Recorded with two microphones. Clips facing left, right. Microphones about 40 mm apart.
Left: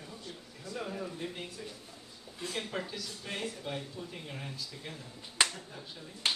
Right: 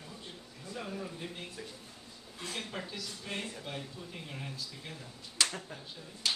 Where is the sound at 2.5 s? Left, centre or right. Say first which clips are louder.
Left 3 dB; centre.